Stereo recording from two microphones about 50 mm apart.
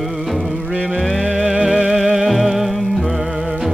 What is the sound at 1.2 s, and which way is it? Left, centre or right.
Music, centre.